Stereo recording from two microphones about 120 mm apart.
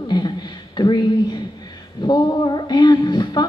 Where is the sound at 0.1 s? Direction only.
35° left (ahead or behind).